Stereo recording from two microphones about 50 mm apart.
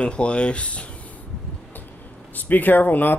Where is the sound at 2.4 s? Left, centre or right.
Left.